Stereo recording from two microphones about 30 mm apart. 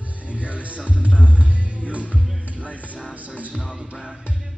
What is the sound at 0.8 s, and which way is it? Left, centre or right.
Music, left.